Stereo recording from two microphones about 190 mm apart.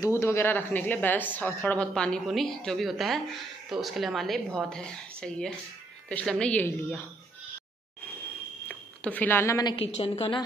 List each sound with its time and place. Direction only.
0.0 s a woman's voice: 15° left (ahead or behind)
8.6 s speech: 10° left (ahead or behind)
9.8 s a woman's voice: 30° left (ahead or behind)